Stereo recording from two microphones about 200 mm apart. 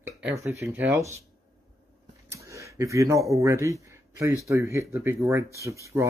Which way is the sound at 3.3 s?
15° right (ahead or behind).